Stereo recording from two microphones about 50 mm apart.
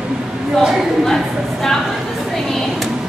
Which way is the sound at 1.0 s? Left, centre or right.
Centre.